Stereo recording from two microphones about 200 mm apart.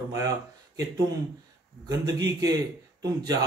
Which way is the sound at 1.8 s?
20° right (ahead or behind).